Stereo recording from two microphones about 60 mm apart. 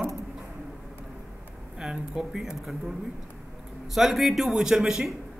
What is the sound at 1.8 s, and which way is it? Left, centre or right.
Speech, centre.